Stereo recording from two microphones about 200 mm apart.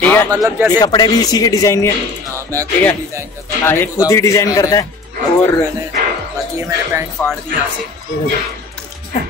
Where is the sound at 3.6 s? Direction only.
10° left (ahead or behind).